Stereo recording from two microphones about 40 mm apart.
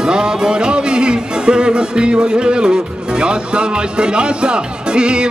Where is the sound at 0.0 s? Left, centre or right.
Centre.